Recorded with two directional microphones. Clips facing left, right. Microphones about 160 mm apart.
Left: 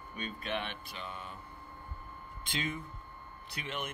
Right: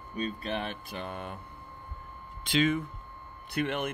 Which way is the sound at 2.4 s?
90° right.